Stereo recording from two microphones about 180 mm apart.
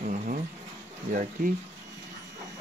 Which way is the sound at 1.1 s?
45° right (ahead or behind).